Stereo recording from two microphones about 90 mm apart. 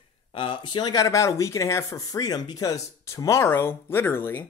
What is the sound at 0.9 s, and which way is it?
Speech, 35° left (ahead or behind).